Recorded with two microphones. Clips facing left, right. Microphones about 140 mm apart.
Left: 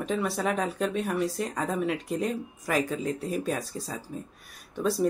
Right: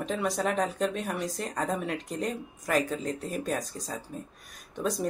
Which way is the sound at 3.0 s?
40° right (ahead or behind).